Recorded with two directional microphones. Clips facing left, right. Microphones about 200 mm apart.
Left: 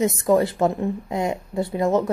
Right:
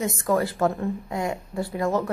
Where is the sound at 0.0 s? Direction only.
20° left (ahead or behind).